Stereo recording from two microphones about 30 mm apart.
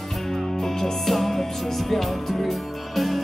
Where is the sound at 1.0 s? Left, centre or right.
Centre.